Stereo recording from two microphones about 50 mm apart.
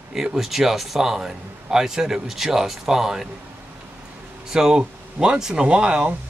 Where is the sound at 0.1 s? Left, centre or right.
Centre.